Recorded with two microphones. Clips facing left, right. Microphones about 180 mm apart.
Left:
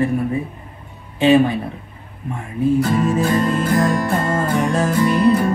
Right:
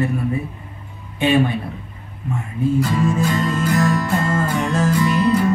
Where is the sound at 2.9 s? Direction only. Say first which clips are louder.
Left 2 dB; 25° left (ahead or behind).